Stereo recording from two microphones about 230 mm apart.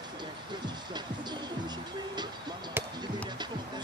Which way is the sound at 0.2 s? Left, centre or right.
Centre.